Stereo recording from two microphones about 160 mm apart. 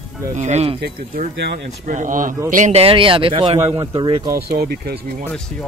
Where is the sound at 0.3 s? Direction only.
45° right (ahead or behind).